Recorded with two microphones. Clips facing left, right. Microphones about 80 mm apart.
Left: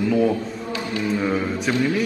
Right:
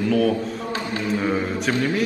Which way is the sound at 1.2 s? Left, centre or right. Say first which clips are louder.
Right 1 dB; centre.